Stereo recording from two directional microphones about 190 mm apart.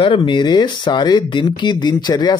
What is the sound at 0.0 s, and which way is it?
Speech, 25° left (ahead or behind).